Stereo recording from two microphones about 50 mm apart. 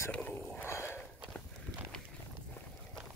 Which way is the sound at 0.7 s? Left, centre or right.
Left.